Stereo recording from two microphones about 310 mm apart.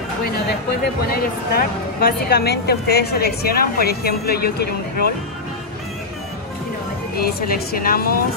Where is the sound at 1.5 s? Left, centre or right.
Left.